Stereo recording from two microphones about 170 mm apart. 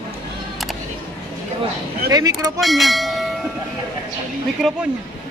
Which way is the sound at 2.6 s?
Centre (ahead or behind).